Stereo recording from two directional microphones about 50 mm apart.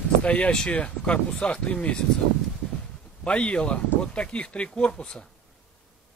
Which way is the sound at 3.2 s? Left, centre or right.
Left.